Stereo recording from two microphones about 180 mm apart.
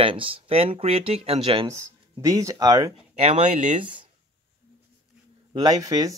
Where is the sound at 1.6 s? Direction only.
15° right (ahead or behind).